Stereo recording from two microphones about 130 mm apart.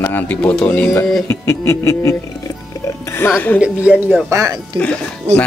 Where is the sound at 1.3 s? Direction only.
20° left (ahead or behind).